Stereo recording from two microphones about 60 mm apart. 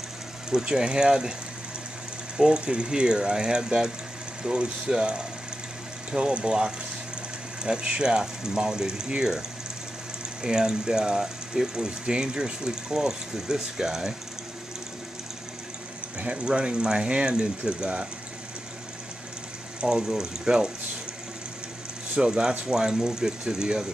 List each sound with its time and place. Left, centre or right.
0.5 s speech: centre
2.3 s speech: centre
10.4 s speech: centre
16.2 s speech: centre
19.8 s speech: centre
22.1 s speech: centre